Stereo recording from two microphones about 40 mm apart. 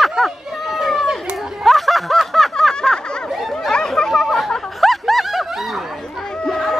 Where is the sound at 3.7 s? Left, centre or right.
Centre.